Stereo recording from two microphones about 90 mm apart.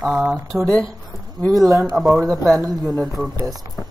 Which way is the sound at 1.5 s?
40° right (ahead or behind).